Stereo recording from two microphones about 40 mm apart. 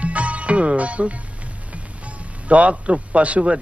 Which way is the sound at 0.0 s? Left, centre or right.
Right.